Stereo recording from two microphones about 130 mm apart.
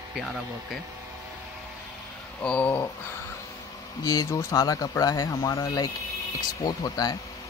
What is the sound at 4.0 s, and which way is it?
Speech, 30° left (ahead or behind).